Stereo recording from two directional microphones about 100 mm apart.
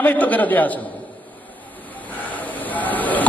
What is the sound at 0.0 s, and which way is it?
Speech, 15° left (ahead or behind).